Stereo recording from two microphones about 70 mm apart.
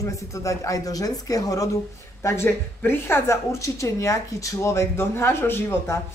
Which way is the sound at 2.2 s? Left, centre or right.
Left.